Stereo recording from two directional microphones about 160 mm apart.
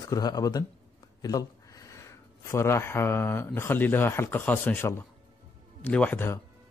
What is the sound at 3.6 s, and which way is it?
Speech, 10° left (ahead or behind).